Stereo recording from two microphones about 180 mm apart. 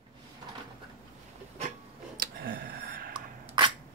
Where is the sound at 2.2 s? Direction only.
55° right (ahead or behind).